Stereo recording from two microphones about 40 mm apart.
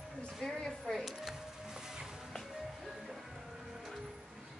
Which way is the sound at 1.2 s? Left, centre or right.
Centre.